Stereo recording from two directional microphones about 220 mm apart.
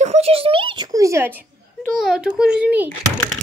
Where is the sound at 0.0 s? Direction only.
30° right (ahead or behind); by 1.4 s 10° right (ahead or behind).